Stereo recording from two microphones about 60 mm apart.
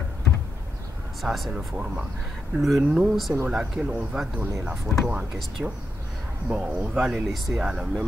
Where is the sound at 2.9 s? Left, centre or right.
Centre.